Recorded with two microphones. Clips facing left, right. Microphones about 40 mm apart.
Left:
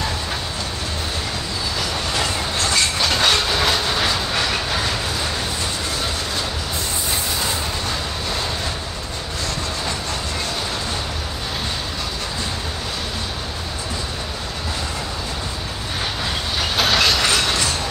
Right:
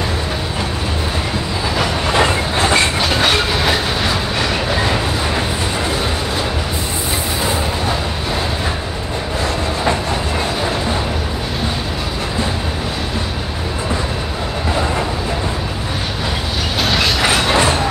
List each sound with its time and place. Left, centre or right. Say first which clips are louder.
1.8 s train: right 9 dB; right
3.0 s train: right 3 dB; centre
7.4 s a sound: right 6 dB; centre
10.4 s music: right 6 dB; centre
16.7 s train: right 1 dB; centre